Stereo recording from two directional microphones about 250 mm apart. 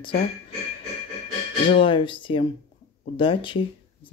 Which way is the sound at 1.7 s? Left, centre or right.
Centre.